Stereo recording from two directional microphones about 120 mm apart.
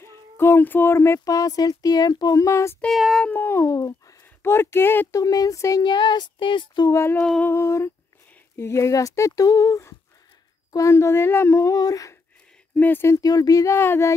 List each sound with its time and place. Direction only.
0.0 s speech: 20° left (ahead or behind)
2.8 s a sound: centre (ahead or behind)
3.3 s cat: 15° left (ahead or behind)
3.6 s speech: 30° left (ahead or behind)
4.4 s speech: 20° left (ahead or behind)
5.2 s speech: 30° left (ahead or behind)
5.8 s speech: 40° left (ahead or behind)
6.9 s speech: 20° left (ahead or behind)
7.2 s a sound: 5° left (ahead or behind)
7.4 s speech: 25° left (ahead or behind)
12.7 s speech: 15° left (ahead or behind)